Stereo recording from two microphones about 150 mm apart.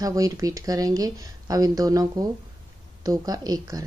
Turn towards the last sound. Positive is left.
turn(degrees=-25)  # may be behind; listen again after turning